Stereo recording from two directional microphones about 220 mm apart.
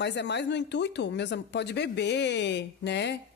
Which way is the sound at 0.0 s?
50° left (ahead or behind).